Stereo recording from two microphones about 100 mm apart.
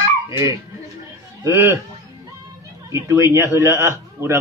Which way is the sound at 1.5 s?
25° right (ahead or behind).